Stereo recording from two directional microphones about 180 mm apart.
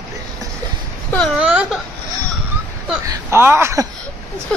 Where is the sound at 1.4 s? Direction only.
5° right (ahead or behind).